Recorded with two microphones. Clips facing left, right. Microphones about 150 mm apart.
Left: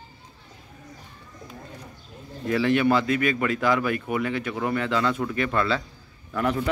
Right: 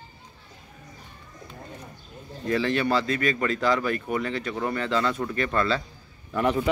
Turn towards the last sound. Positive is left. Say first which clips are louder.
# right 1 dB
turn(degrees=-5)  # may be behind; listen again after turning